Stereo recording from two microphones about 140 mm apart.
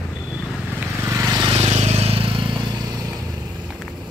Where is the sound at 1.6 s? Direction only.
50° right (ahead or behind).